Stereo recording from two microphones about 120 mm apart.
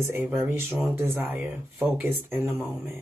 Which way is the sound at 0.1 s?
20° right (ahead or behind).